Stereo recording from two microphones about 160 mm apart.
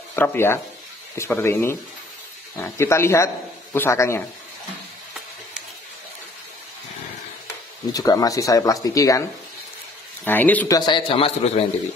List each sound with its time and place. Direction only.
0.1 s speech: 15° left (ahead or behind)
7.9 s speech: 20° left (ahead or behind)
10.2 s speech: 10° left (ahead or behind)
10.7 s a man's voice: 30° left (ahead or behind)